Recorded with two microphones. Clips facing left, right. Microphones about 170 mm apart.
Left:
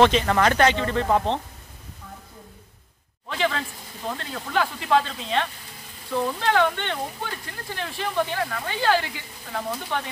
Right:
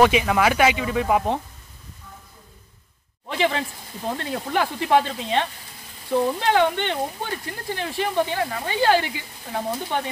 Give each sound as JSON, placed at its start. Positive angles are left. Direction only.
{"t": 0.0, "sound": "speech", "side_deg": -10}
{"t": 3.3, "sound": "speech", "side_deg": -25}